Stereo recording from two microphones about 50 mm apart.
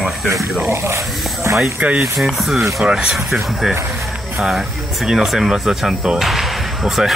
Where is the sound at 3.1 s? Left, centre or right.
Centre.